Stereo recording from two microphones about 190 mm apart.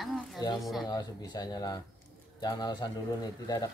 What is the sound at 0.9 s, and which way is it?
Speech, 20° left (ahead or behind).